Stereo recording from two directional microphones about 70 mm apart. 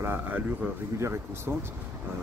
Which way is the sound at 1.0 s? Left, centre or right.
Right.